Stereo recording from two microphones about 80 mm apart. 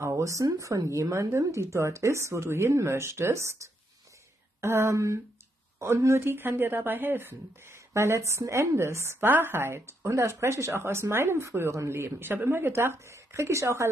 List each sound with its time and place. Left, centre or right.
0.0 s speech: right